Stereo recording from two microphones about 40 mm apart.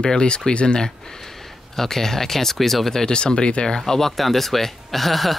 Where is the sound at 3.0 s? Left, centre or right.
Left.